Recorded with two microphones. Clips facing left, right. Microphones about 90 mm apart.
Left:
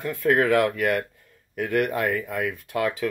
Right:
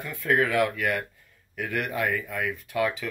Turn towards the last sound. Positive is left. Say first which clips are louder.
# left 1 dB
turn(degrees=45)  # may be behind; listen again after turning